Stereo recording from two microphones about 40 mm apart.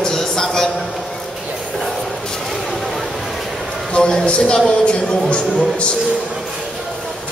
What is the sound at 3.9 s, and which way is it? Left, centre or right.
A man's voice, left.